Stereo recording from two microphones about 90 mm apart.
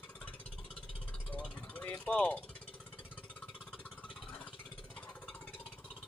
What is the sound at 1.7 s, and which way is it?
Vehicle, 15° left (ahead or behind).